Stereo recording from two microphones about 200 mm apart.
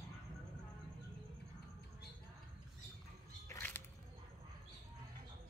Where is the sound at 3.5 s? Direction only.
10° left (ahead or behind).